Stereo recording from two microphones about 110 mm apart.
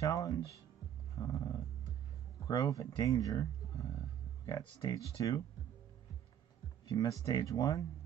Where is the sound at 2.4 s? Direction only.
30° left (ahead or behind).